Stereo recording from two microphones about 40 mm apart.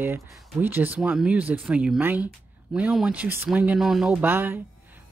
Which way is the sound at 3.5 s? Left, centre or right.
Right.